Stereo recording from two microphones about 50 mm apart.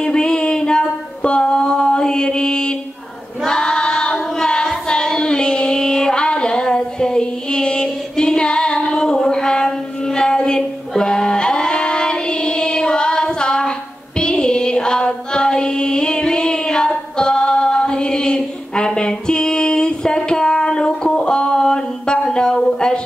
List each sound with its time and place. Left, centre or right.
0.0 s a sound: centre
3.4 s choir: centre
4.8 s child singing: centre